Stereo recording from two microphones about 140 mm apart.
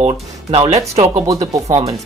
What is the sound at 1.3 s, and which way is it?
Speech, 25° right (ahead or behind).